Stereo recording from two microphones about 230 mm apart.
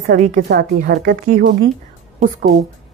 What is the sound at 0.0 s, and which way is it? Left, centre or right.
A woman's voice, right.